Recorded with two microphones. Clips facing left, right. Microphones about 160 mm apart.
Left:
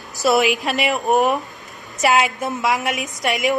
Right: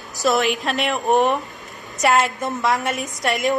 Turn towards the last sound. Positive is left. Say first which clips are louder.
# even
turn(degrees=0)  # may be behind; listen again after turning